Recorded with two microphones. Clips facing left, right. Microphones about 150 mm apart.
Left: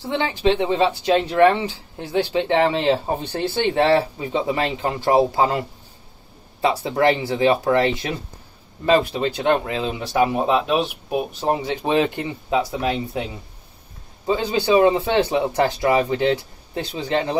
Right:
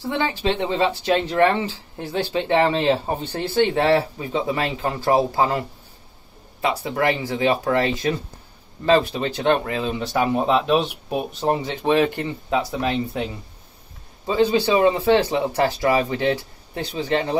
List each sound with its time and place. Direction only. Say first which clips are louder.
0.3 s speech: left 4 dB; 20° left (ahead or behind)
6.6 s speech: left 3 dB; 25° left (ahead or behind)
14.2 s speech: right 2 dB; 20° left (ahead or behind)